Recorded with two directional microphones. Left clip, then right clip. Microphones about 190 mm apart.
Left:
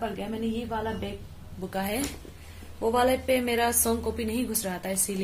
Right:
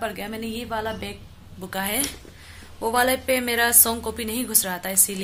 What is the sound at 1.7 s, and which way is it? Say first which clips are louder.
Speech: right 4 dB; centre (ahead or behind).